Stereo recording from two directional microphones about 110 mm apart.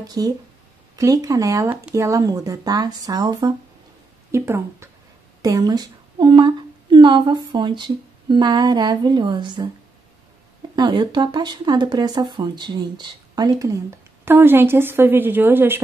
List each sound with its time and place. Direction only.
0.0 s speech: 35° right (ahead or behind)
4.3 s a woman's voice: 25° right (ahead or behind); by 9.7 s 45° right (ahead or behind)
10.8 s speech: 45° right (ahead or behind); by 15.8 s 20° right (ahead or behind)